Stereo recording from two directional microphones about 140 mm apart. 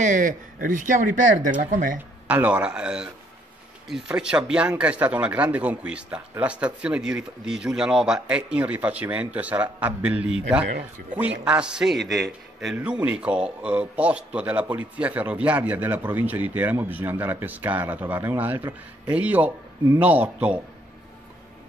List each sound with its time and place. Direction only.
0.0 s speech: 65° right (ahead or behind)
2.2 s a man's voice: 10° right (ahead or behind)